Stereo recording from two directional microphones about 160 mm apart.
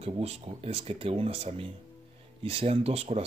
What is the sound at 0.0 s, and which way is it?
Speech, 40° right (ahead or behind).